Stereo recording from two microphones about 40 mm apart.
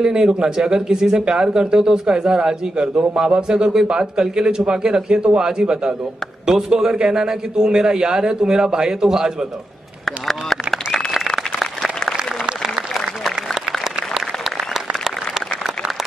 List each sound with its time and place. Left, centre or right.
0.0 s a man's voice: centre
10.0 s a sound: centre
11.1 s applause: centre
13.7 s applause: centre